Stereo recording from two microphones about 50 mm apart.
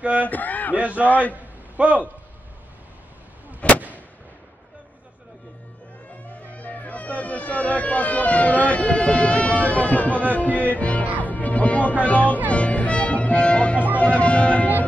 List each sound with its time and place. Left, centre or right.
0.0 s speech: right
0.3 s speech: left
0.7 s a man's voice: right
1.0 s a man's voice: left
1.3 s a sound: right
3.6 s artillery fire: left
6.4 s music: left
12.0 s speech: left
12.4 s music: left